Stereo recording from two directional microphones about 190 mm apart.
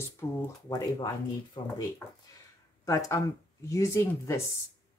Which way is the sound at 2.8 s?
15° left (ahead or behind).